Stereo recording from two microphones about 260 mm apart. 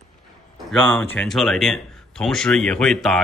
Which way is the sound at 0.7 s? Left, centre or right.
Centre.